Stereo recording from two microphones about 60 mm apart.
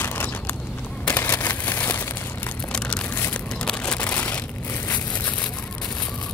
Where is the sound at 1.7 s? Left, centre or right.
Left.